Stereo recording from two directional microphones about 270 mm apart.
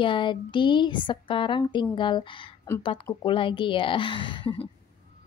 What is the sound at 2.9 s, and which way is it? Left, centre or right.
A woman's voice, centre.